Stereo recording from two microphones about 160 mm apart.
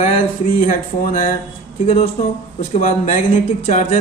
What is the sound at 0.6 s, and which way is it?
Speech, 55° left (ahead or behind).